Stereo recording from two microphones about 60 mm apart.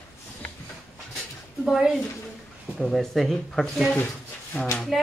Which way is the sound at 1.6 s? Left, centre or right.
Centre.